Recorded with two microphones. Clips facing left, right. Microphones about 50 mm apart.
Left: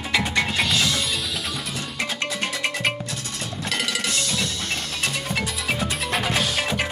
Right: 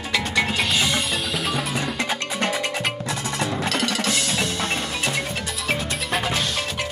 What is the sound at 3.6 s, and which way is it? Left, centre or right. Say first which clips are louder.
Percussion: left 1 dB; centre.